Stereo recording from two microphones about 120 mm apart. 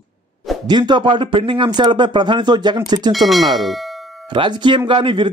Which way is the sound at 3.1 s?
Centre (ahead or behind).